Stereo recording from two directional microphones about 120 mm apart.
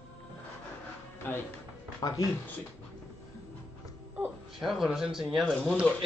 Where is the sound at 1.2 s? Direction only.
15° left (ahead or behind).